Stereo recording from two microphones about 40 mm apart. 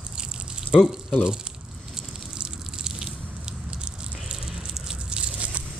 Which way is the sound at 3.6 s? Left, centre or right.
Right.